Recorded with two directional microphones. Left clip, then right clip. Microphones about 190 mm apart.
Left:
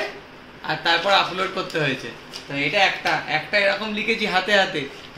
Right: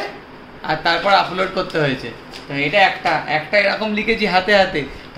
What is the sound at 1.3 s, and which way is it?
Speech, 30° right (ahead or behind).